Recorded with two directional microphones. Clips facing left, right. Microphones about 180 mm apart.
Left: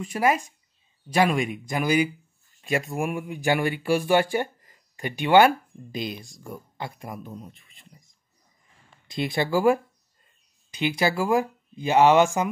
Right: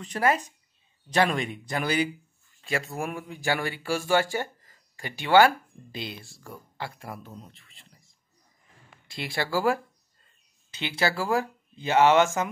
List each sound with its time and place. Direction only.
0.0 s speech: 10° left (ahead or behind)